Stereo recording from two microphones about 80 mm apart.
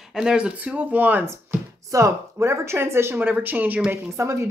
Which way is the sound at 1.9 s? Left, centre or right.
Right.